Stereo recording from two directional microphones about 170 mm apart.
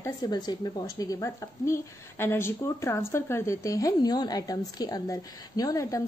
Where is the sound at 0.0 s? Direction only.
25° left (ahead or behind).